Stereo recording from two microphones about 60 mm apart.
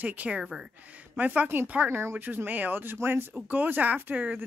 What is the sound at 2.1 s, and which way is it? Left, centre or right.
Speech, right.